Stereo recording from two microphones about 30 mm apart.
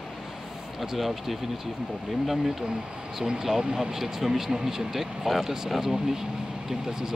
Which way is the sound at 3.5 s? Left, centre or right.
Right.